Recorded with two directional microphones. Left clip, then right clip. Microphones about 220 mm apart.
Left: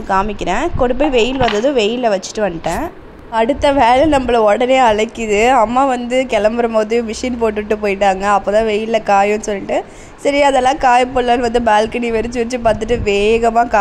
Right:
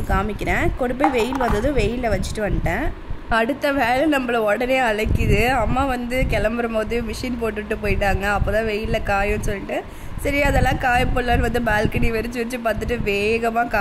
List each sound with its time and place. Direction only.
0.1 s a woman's voice: 5° left (ahead or behind)